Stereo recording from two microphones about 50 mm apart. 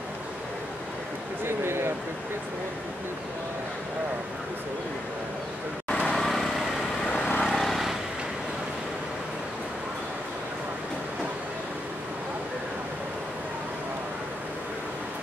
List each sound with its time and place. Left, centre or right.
1.4 s a sound: right
5.9 s vehicle: left
6.1 s vehicle: centre
7.1 s vehicle: centre
7.4 s vehicle: centre